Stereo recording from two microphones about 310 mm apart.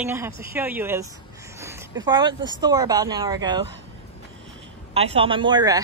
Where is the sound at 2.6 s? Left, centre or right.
Centre.